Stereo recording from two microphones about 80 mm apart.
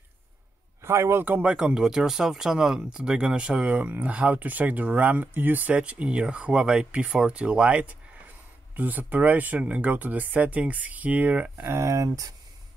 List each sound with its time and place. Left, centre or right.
0.8 s speech: right
1.4 s speech: centre
11.5 s speech: right